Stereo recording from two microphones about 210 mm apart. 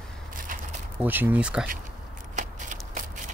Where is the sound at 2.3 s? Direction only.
35° right (ahead or behind).